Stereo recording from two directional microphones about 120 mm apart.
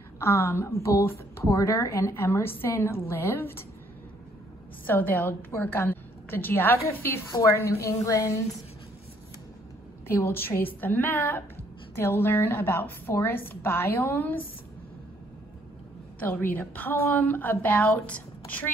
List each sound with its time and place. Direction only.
0.2 s a woman's voice: 20° left (ahead or behind)
4.8 s a woman's voice: 15° left (ahead or behind)
10.0 s a woman's voice: 20° left (ahead or behind)
16.2 s a woman's voice: 15° left (ahead or behind)